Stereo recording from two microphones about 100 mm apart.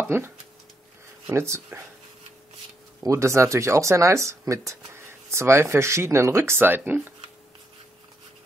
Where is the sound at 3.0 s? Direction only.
30° right (ahead or behind).